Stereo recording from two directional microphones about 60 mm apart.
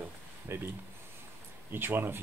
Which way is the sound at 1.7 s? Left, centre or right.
Right.